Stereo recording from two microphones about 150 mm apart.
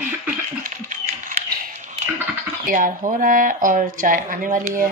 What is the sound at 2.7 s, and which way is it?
Speech, 60° right (ahead or behind).